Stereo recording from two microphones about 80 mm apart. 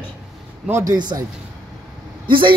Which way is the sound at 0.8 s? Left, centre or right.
Right.